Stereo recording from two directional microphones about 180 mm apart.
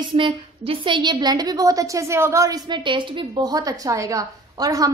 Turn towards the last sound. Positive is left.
turn(degrees=-20)  # may be behind; listen again after turning